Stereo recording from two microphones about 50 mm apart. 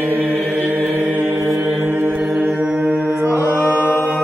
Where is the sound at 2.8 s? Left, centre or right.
Right.